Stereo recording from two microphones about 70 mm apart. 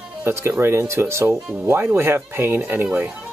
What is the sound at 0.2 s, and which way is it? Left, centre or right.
Speech, right.